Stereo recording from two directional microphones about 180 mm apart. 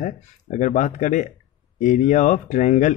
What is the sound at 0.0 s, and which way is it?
Speech, 45° left (ahead or behind).